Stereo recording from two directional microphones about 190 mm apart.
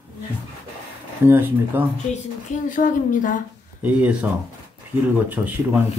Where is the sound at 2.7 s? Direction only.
40° left (ahead or behind).